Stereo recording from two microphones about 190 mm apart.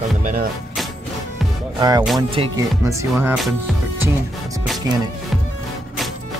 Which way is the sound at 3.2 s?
Centre (ahead or behind).